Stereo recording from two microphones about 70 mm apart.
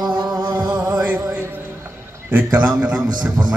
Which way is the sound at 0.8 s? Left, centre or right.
Centre.